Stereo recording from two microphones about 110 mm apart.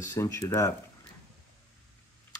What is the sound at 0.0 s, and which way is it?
Speech, 30° left (ahead or behind).